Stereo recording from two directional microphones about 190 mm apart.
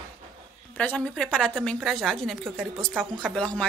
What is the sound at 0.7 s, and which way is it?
A woman's voice, 5° left (ahead or behind).